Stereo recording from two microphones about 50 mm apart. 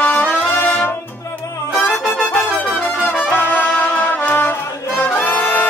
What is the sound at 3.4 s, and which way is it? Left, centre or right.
Music, left.